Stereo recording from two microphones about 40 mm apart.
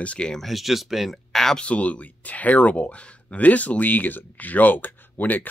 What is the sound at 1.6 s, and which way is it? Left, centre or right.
Speech, left.